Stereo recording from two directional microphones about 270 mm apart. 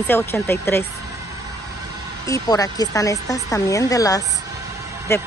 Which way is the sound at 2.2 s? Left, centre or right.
Centre.